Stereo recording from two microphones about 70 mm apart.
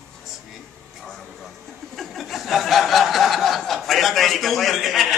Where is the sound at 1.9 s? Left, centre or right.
Centre.